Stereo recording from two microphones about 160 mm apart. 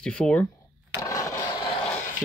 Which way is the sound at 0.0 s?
5° left (ahead or behind).